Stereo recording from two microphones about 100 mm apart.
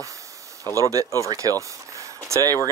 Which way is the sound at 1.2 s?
35° right (ahead or behind).